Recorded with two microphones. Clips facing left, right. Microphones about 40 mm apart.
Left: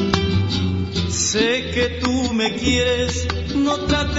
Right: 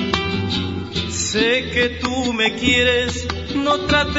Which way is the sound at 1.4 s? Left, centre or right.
Right.